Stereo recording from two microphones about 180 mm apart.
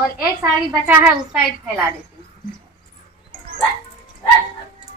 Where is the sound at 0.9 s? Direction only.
10° right (ahead or behind).